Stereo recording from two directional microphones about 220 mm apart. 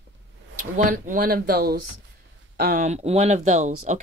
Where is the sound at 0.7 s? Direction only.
35° right (ahead or behind).